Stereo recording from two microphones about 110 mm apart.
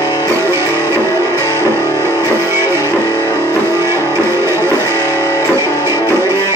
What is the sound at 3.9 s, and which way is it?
Music, 25° right (ahead or behind).